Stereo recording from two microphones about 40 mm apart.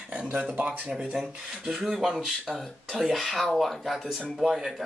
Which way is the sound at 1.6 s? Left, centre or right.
Centre.